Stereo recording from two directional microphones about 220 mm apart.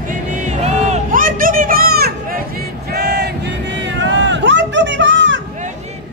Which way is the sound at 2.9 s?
50° right (ahead or behind).